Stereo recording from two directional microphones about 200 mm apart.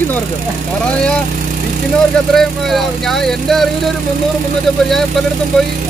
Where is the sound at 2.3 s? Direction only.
Centre (ahead or behind).